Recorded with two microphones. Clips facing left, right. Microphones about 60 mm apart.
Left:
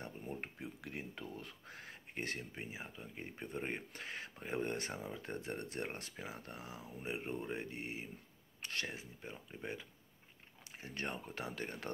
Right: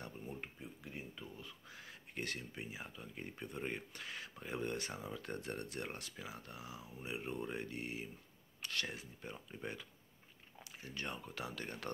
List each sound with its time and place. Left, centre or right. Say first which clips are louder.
0.6 s speech: left 3 dB; left
2.1 s speech: left 1 dB; left
4.9 s speech: left 1 dB; left
10.8 s speech: left 2 dB; left